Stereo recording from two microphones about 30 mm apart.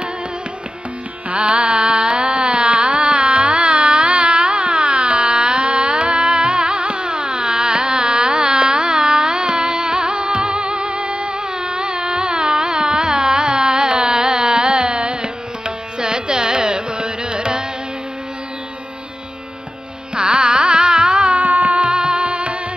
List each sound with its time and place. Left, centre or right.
1.3 s carnatic music: right
20.2 s carnatic music: right
21.4 s music: right
21.7 s music: right